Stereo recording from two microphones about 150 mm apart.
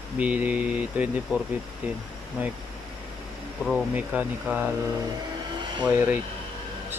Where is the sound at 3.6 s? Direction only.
5° right (ahead or behind).